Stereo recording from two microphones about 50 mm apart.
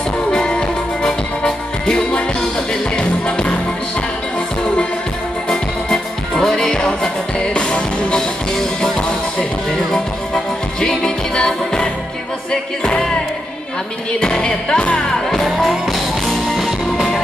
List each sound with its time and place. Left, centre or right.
0.3 s music: centre
5.5 s music: centre
14.2 s music: centre
15.2 s music: centre